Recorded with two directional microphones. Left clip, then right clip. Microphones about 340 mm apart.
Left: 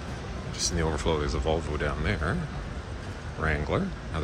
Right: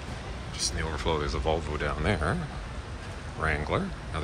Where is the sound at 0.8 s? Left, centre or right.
Centre.